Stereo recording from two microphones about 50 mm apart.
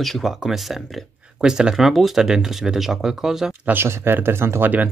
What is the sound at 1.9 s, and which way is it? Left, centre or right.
Speech, centre.